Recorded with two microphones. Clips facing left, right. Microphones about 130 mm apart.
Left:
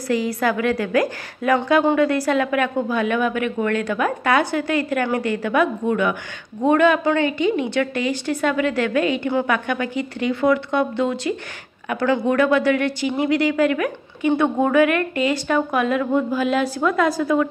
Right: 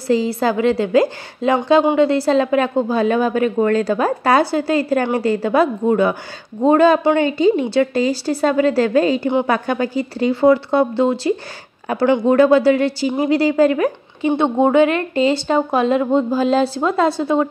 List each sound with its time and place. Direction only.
0.1 s a woman's voice: 30° right (ahead or behind)